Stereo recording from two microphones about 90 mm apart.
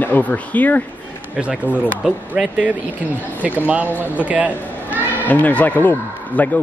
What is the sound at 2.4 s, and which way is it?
Speech, centre (ahead or behind).